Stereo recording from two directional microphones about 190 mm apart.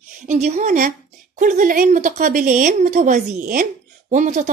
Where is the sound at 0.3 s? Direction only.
40° right (ahead or behind).